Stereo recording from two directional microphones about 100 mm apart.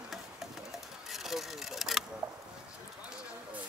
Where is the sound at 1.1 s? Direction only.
Centre (ahead or behind).